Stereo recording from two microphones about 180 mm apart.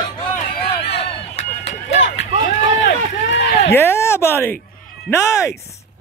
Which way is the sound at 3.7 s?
15° left (ahead or behind).